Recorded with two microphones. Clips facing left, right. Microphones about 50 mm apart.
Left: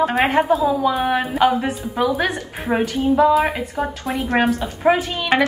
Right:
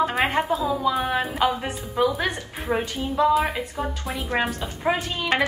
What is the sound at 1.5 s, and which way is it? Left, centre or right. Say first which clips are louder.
A woman's voice: left 6 dB; left.